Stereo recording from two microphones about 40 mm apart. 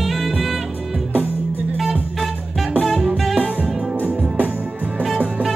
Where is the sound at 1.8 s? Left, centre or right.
Centre.